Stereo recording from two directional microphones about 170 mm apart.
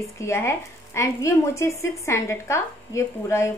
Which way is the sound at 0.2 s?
15° left (ahead or behind).